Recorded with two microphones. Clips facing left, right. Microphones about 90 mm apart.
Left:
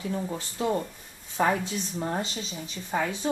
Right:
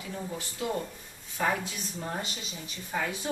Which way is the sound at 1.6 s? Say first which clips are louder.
Left 6 dB; 30° left (ahead or behind).